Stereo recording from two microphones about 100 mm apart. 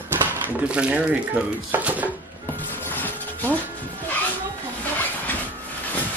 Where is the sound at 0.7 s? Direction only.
10° right (ahead or behind).